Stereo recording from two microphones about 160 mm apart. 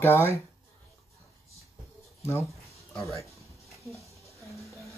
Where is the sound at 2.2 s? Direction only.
15° left (ahead or behind).